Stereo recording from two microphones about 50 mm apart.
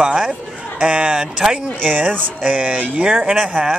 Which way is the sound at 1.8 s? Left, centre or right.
Right.